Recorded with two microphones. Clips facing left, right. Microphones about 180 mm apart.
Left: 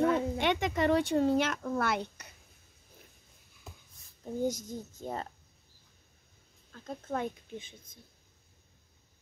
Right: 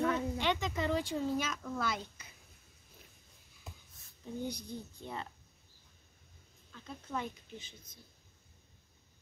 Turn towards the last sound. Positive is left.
turn(degrees=50)  # may be behind; listen again after turning